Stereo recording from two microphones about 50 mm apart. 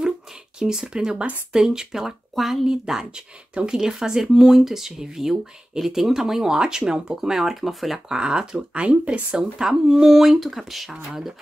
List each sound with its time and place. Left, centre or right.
0.6 s speech: centre
8.2 s speech: centre
9.4 s speech: centre